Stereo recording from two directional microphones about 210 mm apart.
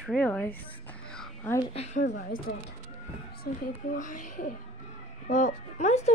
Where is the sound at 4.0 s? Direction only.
35° left (ahead or behind).